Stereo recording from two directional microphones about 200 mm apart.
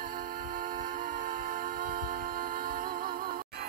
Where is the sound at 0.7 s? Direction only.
40° right (ahead or behind).